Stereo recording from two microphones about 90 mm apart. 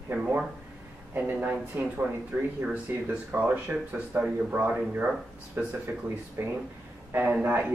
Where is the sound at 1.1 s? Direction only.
20° right (ahead or behind).